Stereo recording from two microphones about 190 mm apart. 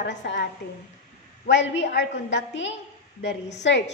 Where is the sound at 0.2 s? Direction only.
65° left (ahead or behind).